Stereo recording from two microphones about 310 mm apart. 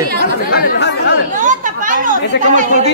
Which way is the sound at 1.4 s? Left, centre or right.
Right.